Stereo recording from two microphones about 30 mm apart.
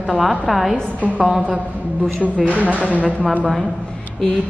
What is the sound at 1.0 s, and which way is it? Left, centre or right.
Speech, right.